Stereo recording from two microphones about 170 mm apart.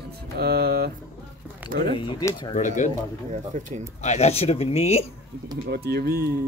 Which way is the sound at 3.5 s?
45° right (ahead or behind).